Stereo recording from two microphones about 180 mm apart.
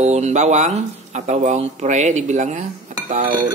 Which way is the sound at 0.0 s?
40° right (ahead or behind).